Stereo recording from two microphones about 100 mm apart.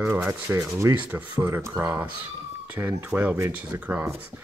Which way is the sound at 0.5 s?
30° right (ahead or behind).